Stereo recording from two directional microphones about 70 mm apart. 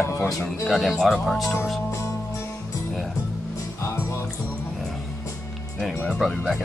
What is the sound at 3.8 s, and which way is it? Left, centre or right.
Music, left.